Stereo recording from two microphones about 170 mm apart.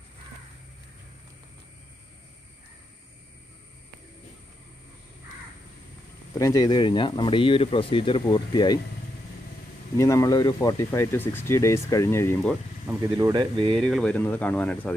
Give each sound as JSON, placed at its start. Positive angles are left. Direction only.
{"t": 6.3, "sound": "speech", "side_deg": 20}
{"t": 9.9, "sound": "speech", "side_deg": 20}
{"t": 13.2, "sound": "speech", "side_deg": -25}
{"t": 13.7, "sound": "speech", "side_deg": 5}